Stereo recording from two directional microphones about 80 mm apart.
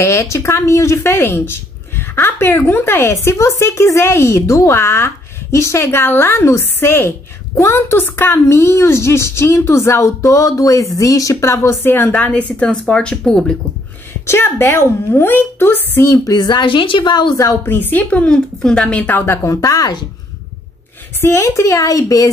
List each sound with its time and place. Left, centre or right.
0.0 s a woman's voice: left; by 13.5 s centre
14.2 s a woman's voice: left
16.3 s a woman's voice: left
17.6 s a woman's voice: left
19.4 s speech: left
21.2 s speech: left